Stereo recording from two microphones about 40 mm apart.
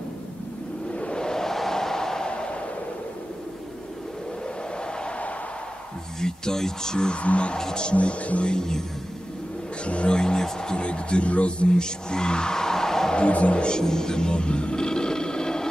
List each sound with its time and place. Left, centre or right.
0.9 s a sound: left
6.2 s speech: centre
7.5 s speech: centre
7.9 s speech: left
8.5 s speech: centre
9.8 s speech: left
13.1 s speech: left